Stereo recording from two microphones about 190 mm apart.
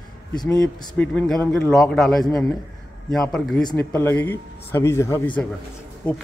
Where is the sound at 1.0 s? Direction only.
5° left (ahead or behind).